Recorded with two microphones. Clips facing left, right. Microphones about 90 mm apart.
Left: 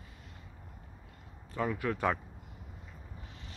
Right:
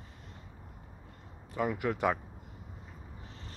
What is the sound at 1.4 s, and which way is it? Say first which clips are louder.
Speech: right 1 dB; 15° right (ahead or behind).